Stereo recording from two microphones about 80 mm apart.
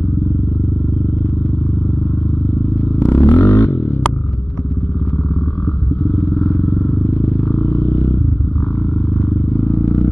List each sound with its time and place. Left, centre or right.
3.0 s a sound: left
6.4 s vehicle: left
9.7 s vehicle: left